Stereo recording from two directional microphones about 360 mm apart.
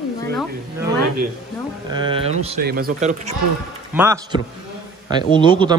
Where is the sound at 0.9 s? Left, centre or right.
Right.